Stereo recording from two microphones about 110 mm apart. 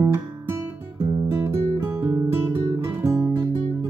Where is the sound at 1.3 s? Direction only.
25° right (ahead or behind).